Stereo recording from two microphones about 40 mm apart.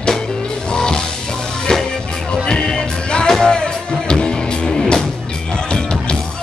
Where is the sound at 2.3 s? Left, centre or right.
Centre.